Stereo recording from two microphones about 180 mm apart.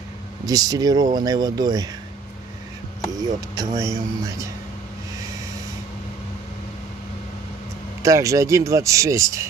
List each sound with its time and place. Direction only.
0.5 s speech: 20° right (ahead or behind)
3.3 s speech: 20° right (ahead or behind)
8.0 s speech: 15° right (ahead or behind)